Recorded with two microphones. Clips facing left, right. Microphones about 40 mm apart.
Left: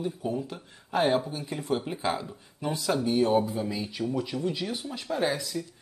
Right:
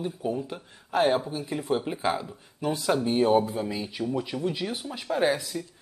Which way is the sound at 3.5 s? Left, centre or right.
Centre.